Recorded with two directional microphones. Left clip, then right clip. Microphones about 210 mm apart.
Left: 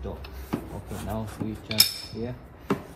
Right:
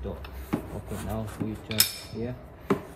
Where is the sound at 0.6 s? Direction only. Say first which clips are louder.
Even; centre (ahead or behind).